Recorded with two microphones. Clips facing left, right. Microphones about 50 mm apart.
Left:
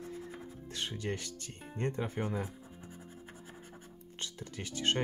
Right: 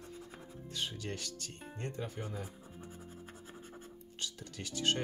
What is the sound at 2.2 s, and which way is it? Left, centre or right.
Speech, left.